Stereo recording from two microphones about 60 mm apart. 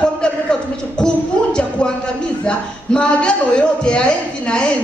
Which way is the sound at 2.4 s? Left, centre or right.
Centre.